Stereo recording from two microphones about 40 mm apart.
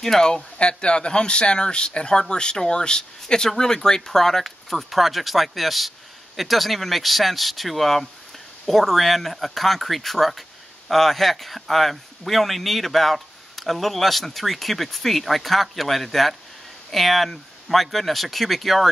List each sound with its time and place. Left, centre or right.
0.2 s speech: centre